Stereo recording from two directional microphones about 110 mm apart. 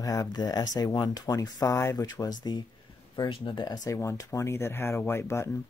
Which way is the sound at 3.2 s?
45° left (ahead or behind).